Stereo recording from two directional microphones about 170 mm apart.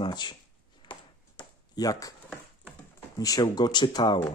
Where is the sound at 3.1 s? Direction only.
20° left (ahead or behind).